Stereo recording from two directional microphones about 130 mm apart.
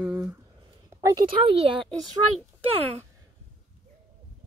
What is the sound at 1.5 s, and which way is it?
Speech, 45° right (ahead or behind).